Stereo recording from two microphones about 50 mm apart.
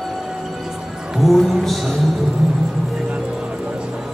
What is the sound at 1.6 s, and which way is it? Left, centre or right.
Speech, centre.